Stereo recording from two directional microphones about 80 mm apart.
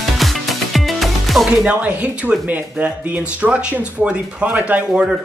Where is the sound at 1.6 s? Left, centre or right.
Centre.